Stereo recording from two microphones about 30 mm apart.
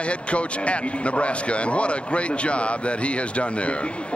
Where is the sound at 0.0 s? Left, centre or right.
Left.